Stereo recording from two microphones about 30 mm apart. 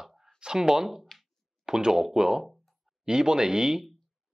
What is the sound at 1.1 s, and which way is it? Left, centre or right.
Plop, centre.